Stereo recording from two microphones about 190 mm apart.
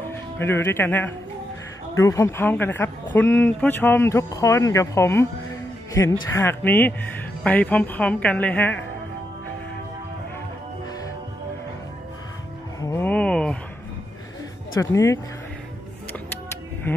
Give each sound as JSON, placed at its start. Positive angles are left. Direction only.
{"t": 0.1, "sound": "speech", "side_deg": 10}
{"t": 12.8, "sound": "music", "side_deg": 10}
{"t": 14.8, "sound": "speech", "side_deg": 15}
{"t": 16.9, "sound": "livestock", "side_deg": 10}